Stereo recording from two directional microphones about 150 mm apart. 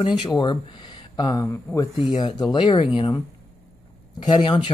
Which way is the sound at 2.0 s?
30° left (ahead or behind).